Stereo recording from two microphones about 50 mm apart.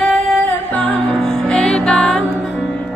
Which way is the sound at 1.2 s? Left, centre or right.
Centre.